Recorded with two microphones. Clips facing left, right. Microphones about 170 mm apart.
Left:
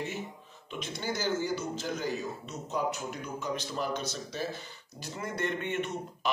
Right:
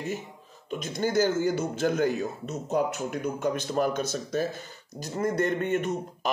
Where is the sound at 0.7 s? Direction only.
45° right (ahead or behind).